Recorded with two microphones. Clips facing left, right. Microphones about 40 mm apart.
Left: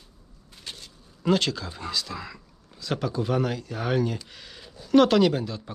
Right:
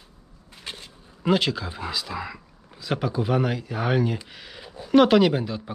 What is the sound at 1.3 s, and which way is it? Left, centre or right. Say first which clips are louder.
Speech: right 2 dB; centre.